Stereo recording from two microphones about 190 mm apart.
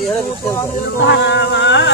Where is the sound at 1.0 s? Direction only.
65° left (ahead or behind).